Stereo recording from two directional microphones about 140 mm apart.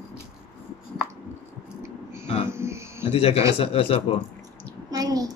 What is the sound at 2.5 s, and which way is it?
Cricket, 20° right (ahead or behind).